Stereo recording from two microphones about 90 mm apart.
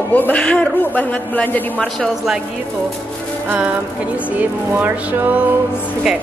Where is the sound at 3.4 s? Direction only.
20° right (ahead or behind).